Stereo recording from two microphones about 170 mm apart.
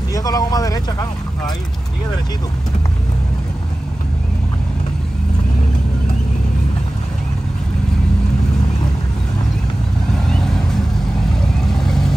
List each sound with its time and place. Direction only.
0.1 s speech: 20° left (ahead or behind)
10.3 s vehicle: 5° left (ahead or behind)
11.8 s vehicle: 5° left (ahead or behind)